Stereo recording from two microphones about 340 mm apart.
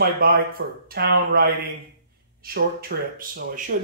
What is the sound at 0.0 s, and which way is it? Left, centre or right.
Speech, right.